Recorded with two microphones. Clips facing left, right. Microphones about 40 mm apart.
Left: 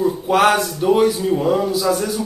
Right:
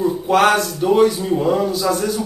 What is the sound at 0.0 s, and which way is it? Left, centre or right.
Speech, centre.